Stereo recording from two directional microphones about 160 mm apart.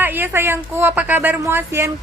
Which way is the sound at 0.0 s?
15° right (ahead or behind).